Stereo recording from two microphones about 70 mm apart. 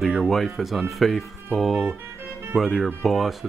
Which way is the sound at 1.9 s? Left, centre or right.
Right.